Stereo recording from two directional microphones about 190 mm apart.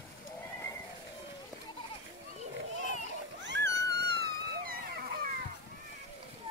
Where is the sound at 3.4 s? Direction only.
70° right (ahead or behind); by 5.2 s 50° right (ahead or behind).